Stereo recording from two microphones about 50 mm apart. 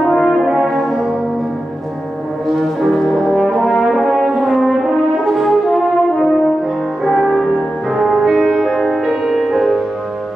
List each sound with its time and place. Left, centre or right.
0.0 s brass instrument: centre
2.9 s brass instrument: centre
7.1 s music: centre